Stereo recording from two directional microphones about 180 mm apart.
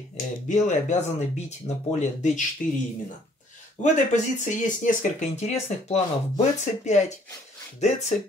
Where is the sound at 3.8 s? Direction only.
40° left (ahead or behind).